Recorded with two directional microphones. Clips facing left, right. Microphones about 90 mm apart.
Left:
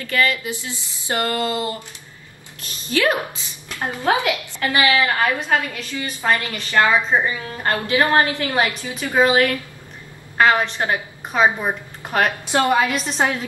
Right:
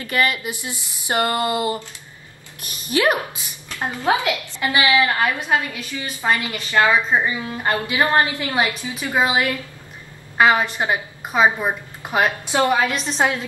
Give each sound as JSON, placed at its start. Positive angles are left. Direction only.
{"t": 0.0, "sound": "a woman's voice", "side_deg": -20}
{"t": 12.7, "sound": "a woman's voice", "side_deg": 0}